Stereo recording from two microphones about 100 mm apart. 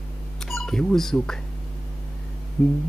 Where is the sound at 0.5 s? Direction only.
5° left (ahead or behind).